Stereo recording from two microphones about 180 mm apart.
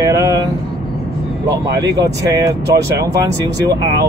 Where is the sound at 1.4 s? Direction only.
20° right (ahead or behind).